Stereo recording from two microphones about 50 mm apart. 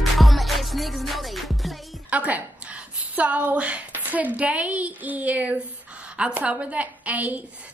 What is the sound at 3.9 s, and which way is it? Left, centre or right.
A woman's voice, right.